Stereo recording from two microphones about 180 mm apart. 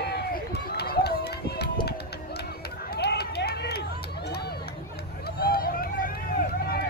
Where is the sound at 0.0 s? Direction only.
65° left (ahead or behind).